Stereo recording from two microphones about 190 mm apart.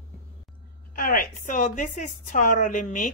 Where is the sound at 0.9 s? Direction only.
45° left (ahead or behind).